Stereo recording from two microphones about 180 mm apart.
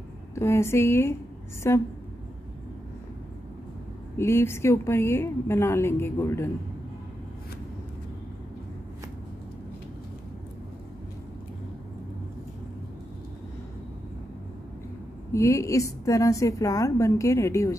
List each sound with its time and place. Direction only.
0.3 s a woman's voice: 15° left (ahead or behind)
4.2 s a woman's voice: 15° left (ahead or behind)
15.3 s a woman's voice: 15° left (ahead or behind)